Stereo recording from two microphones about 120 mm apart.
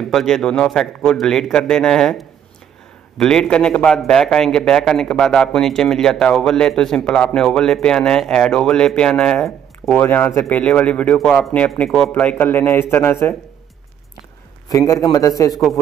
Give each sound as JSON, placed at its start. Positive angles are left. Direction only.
{"t": 0.1, "sound": "a man's voice", "side_deg": 5}
{"t": 9.9, "sound": "a man's voice", "side_deg": 15}
{"t": 14.7, "sound": "a man's voice", "side_deg": 25}